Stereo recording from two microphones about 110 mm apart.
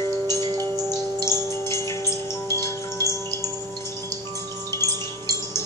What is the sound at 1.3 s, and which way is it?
Wind chime, 25° left (ahead or behind).